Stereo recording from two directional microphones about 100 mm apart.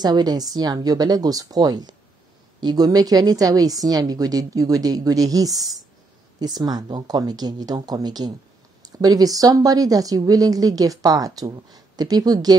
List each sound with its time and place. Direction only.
0.0 s speech: 40° right (ahead or behind)